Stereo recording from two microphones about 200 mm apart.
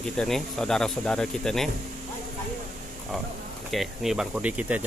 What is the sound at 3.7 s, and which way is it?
Speech, centre (ahead or behind).